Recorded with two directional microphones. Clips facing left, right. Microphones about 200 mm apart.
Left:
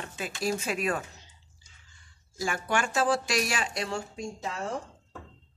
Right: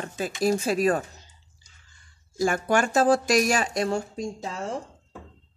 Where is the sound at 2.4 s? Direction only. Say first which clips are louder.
Right 7 dB; 40° right (ahead or behind).